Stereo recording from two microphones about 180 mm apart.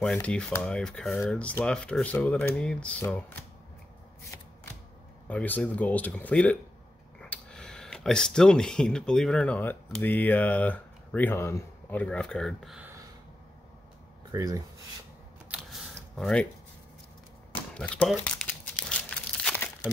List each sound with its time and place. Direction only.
0.0 s speech: 5° left (ahead or behind)
5.3 s speech: 10° left (ahead or behind)
14.3 s speech: 20° right (ahead or behind)
15.9 s a sound: 5° left (ahead or behind)
17.7 s crumpling: 5° left (ahead or behind)